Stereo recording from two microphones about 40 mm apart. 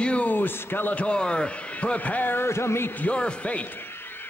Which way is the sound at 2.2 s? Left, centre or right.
Left.